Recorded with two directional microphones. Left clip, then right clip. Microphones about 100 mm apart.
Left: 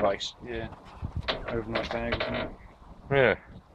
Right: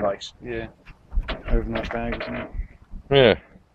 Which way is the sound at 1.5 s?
10° left (ahead or behind).